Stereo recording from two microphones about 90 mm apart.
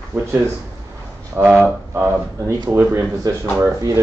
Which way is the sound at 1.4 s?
25° right (ahead or behind).